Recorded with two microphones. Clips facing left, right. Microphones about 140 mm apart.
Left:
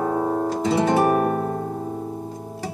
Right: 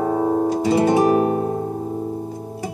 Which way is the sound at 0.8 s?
10° right (ahead or behind).